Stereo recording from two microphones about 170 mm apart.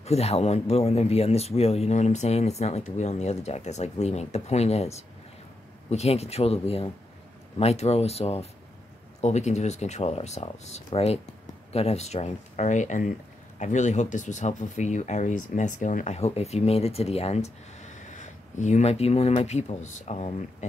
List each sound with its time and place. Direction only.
0.0 s speech: 40° left (ahead or behind)